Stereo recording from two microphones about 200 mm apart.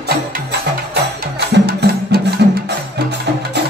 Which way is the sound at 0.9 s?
55° right (ahead or behind).